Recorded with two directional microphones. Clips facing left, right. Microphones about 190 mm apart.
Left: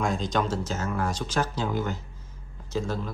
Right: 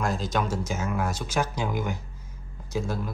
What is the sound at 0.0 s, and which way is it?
Speech, 5° right (ahead or behind).